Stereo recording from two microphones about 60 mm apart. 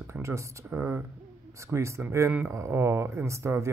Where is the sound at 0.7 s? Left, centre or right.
Right.